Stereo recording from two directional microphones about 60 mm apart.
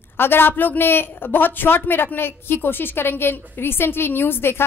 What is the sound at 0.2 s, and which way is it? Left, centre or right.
A woman's voice, left.